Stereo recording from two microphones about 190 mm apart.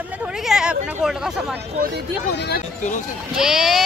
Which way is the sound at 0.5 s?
5° right (ahead or behind).